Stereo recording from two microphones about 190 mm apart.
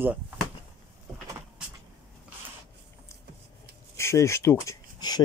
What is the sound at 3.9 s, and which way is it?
Speech, 15° left (ahead or behind).